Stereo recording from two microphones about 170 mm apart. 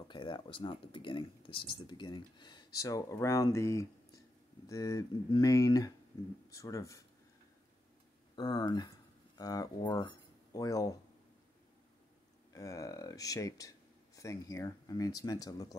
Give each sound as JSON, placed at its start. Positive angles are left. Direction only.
{"t": 0.1, "sound": "speech", "side_deg": 30}
{"t": 8.4, "sound": "speech", "side_deg": 25}
{"t": 12.5, "sound": "speech", "side_deg": 20}